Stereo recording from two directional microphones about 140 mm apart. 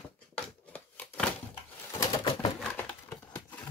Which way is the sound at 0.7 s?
10° left (ahead or behind).